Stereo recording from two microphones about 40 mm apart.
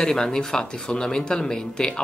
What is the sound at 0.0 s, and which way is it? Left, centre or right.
Speech, centre.